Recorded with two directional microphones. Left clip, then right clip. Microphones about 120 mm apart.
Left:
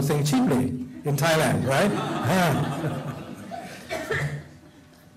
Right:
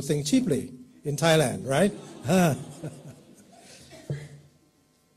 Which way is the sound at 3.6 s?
40° right (ahead or behind).